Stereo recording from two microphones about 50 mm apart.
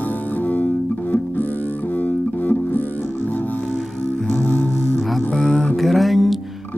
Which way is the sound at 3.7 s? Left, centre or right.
Left.